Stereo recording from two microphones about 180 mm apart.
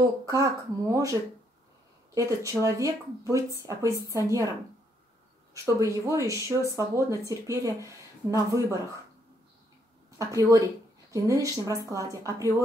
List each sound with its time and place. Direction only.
0.2 s speech: 20° right (ahead or behind)
2.1 s speech: 20° right (ahead or behind)
5.5 s speech: 20° right (ahead or behind)
10.1 s speech: 20° right (ahead or behind)